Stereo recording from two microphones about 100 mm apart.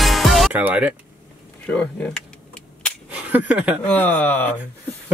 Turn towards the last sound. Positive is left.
turn(degrees=20)  # may be behind; listen again after turning